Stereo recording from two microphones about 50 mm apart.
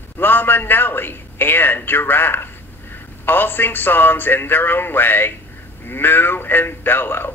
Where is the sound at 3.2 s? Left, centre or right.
Left.